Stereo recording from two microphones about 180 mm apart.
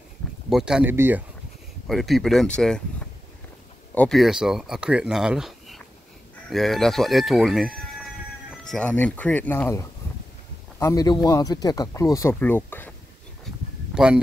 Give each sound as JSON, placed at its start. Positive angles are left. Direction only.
{"t": 0.5, "sound": "speech", "side_deg": -5}
{"t": 1.9, "sound": "speech", "side_deg": 0}
{"t": 3.9, "sound": "speech", "side_deg": 5}
{"t": 13.5, "sound": "a sound", "side_deg": 0}
{"t": 13.9, "sound": "speech", "side_deg": -5}